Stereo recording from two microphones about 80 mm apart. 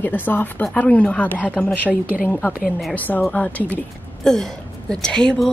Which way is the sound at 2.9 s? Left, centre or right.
Centre.